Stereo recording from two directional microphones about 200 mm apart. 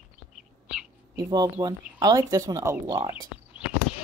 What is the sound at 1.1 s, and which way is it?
A woman's voice, 20° right (ahead or behind).